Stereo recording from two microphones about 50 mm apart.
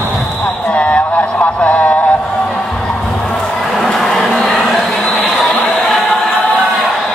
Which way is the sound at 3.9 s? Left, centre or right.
Centre.